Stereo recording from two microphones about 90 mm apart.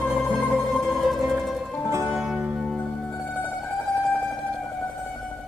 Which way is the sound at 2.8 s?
20° left (ahead or behind).